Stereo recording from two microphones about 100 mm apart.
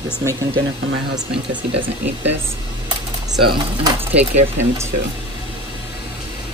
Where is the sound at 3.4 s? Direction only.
55° right (ahead or behind).